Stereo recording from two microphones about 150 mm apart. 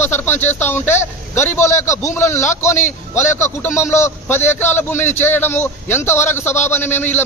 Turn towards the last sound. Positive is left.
turn(degrees=15)  # may be behind; listen again after turning